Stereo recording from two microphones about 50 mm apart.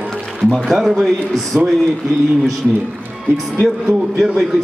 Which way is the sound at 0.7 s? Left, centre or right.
Centre.